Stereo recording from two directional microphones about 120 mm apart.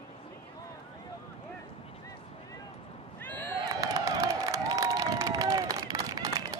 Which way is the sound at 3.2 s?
15° left (ahead or behind).